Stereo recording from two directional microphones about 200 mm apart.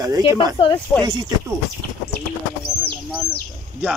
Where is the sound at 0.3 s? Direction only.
15° right (ahead or behind).